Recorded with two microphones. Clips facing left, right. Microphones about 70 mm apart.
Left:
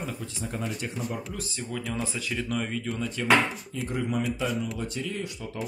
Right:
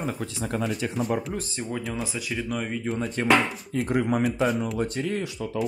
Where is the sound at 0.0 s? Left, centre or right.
Right.